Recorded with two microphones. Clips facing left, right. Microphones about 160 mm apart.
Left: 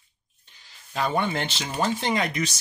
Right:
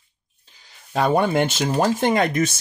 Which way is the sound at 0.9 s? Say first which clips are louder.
Right 7 dB; 45° right (ahead or behind).